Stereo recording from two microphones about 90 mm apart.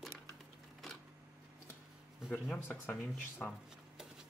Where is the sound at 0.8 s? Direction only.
Centre (ahead or behind).